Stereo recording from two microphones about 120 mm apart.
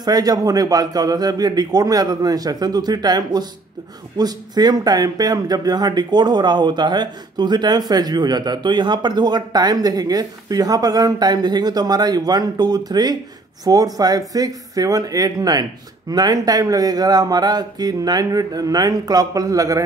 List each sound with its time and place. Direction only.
0.0 s a man's voice: 35° right (ahead or behind)